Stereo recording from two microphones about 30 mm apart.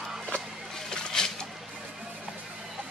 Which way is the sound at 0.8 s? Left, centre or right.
Centre.